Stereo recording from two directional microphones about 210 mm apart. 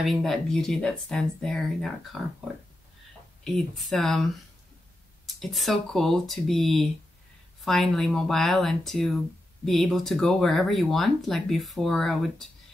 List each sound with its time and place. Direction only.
0.0 s speech: centre (ahead or behind)
3.4 s speech: centre (ahead or behind)